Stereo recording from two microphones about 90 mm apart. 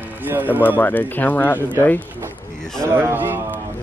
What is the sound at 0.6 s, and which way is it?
Speech, 20° left (ahead or behind).